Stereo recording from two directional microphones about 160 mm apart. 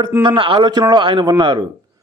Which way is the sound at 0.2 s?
30° right (ahead or behind).